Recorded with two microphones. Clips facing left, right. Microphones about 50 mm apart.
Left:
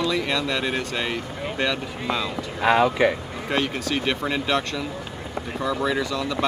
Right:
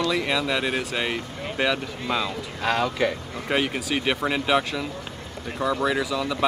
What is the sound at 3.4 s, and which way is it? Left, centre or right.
Speech, centre.